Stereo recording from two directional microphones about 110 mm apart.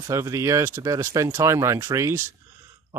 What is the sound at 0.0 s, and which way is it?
Speech, 25° right (ahead or behind).